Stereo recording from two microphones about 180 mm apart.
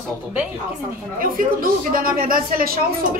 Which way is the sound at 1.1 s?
50° right (ahead or behind).